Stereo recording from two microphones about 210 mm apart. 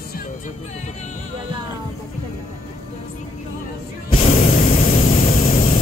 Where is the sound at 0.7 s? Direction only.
35° left (ahead or behind).